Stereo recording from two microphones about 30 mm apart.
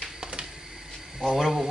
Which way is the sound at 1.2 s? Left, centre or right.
Centre.